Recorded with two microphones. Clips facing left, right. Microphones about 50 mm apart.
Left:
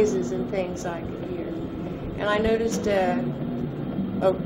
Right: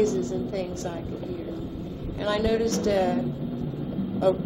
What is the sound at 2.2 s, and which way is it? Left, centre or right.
Speech, left.